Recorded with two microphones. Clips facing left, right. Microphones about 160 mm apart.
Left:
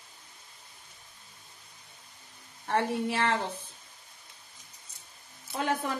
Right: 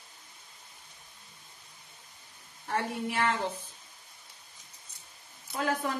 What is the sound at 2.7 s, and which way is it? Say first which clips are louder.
Speech: left 3 dB; 25° left (ahead or behind).